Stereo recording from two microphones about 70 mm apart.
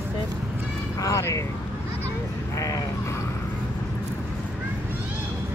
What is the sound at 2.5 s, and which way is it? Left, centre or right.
Sheep, left.